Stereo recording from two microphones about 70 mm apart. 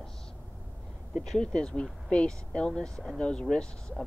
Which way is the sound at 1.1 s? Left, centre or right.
Centre.